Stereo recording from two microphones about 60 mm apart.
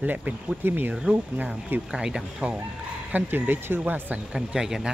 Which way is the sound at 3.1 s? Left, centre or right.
Right.